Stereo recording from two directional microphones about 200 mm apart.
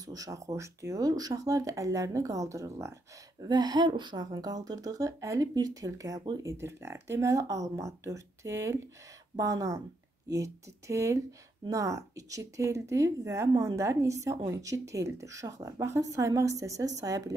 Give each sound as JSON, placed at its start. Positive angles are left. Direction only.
{"t": 0.0, "sound": "a woman's voice", "side_deg": -15}